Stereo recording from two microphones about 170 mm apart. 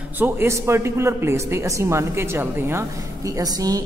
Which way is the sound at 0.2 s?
15° right (ahead or behind).